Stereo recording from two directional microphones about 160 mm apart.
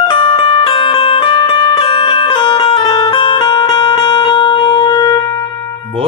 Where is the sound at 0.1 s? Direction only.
30° left (ahead or behind).